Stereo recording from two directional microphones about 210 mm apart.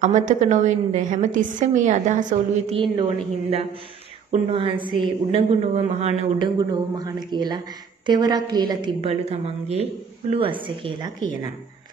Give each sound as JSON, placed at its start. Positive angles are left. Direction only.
{"t": 0.0, "sound": "a woman's voice", "side_deg": -35}
{"t": 2.7, "sound": "a woman's voice", "side_deg": -25}
{"t": 6.6, "sound": "a woman's voice", "side_deg": -20}